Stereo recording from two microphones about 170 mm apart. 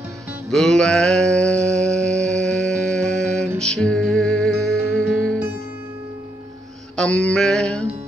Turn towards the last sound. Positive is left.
turn(degrees=5)  # may be behind; listen again after turning